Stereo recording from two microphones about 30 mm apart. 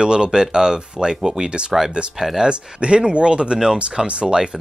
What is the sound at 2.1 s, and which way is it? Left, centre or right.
Speech, centre.